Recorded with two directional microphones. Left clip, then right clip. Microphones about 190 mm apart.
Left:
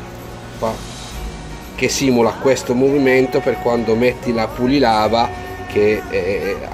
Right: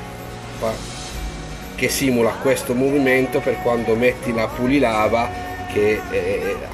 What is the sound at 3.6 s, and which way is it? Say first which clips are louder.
Speech: left 2 dB; centre (ahead or behind).